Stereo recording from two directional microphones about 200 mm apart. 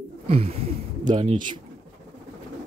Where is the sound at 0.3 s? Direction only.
30° right (ahead or behind).